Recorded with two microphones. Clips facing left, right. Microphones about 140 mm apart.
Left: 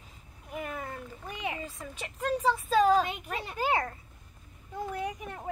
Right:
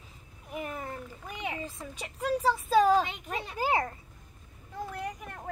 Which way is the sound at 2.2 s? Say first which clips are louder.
Even; 10° right (ahead or behind).